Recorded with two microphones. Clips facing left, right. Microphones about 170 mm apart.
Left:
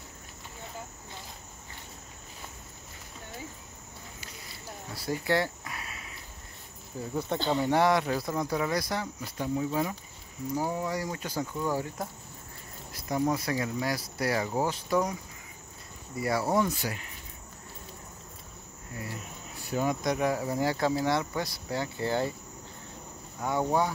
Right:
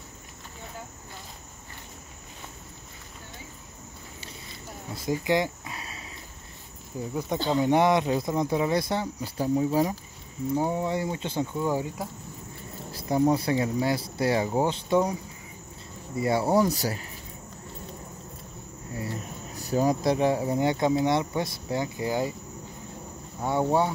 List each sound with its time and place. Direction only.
4.9 s a sound: 15° right (ahead or behind)
7.2 s speech: 10° right (ahead or behind)
12.9 s speech: 30° right (ahead or behind)
16.2 s speech: 25° right (ahead or behind)
19.5 s speech: 40° right (ahead or behind); by 22.3 s 15° right (ahead or behind)
23.4 s speech: 25° right (ahead or behind)